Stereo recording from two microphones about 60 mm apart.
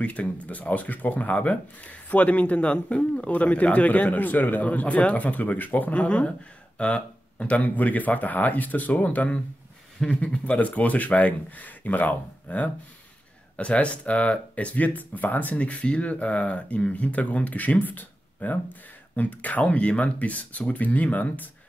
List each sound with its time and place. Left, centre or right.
0.0 s speech: left